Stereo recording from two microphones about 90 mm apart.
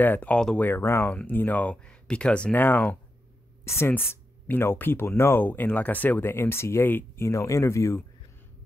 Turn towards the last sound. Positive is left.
turn(degrees=30)  # may be behind; listen again after turning